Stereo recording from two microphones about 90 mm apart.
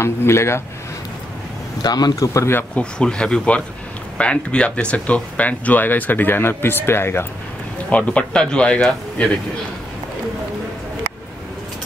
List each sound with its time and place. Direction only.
0.0 s speech: 30° left (ahead or behind)
1.8 s speech: 50° left (ahead or behind)
2.5 s speech: 15° left (ahead or behind)
7.9 s speech: 15° left (ahead or behind)